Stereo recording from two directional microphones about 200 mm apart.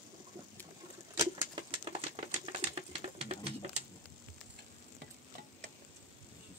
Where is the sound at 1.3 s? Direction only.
25° right (ahead or behind).